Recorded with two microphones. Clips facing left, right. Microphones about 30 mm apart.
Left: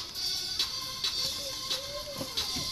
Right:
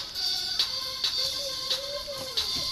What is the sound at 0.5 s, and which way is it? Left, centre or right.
Music, right.